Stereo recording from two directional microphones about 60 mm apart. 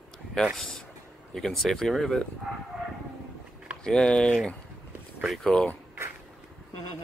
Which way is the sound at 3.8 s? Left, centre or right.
Centre.